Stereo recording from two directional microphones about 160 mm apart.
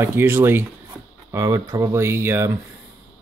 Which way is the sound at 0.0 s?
15° right (ahead or behind).